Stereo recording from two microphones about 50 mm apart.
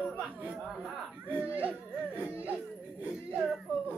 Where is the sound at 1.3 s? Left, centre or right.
Right.